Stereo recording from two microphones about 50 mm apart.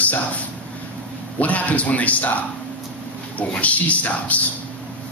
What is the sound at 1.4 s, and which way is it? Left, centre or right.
A man's voice, left.